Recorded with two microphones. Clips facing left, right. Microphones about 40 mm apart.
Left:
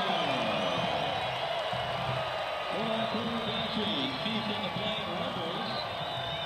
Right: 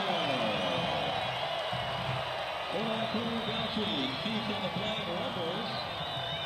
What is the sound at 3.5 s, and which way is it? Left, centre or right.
Speech, centre.